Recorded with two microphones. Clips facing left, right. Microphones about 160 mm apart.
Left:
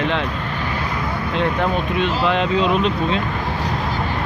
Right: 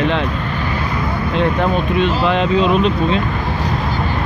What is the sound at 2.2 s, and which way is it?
Speech, 45° right (ahead or behind).